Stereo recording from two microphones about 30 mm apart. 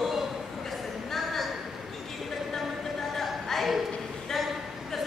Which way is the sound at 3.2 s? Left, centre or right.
Centre.